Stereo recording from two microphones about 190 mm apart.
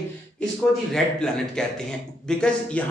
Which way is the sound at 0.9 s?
5° left (ahead or behind).